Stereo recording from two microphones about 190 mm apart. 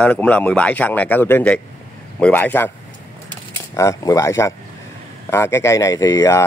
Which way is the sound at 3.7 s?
15° left (ahead or behind).